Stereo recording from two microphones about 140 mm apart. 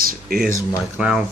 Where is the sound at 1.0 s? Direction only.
10° right (ahead or behind).